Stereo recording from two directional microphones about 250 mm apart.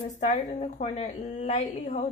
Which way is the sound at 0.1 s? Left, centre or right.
Left.